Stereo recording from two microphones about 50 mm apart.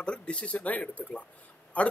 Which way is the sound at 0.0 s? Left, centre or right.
Left.